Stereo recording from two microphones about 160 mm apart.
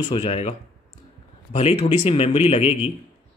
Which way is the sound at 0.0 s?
35° left (ahead or behind).